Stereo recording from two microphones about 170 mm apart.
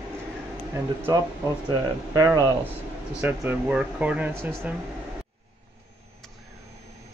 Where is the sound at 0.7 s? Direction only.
15° right (ahead or behind).